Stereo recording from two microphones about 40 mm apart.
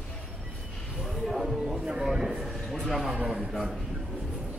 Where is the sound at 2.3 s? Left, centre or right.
Centre.